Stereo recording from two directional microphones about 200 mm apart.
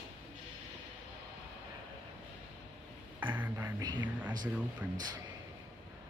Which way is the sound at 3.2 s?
10° right (ahead or behind).